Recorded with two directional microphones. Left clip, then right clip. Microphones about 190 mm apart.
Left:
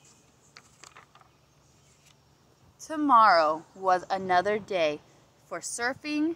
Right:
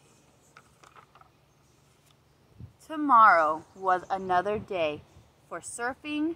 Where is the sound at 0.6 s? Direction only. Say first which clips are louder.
Left 2 dB; 10° left (ahead or behind).